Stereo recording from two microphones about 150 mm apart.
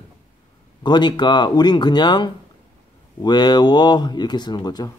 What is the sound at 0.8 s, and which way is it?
Speech, 30° left (ahead or behind).